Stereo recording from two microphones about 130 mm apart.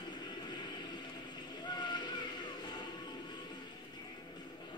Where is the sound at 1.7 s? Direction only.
35° left (ahead or behind).